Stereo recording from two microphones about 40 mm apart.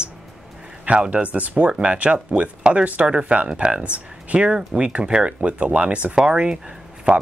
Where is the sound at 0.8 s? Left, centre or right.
Right.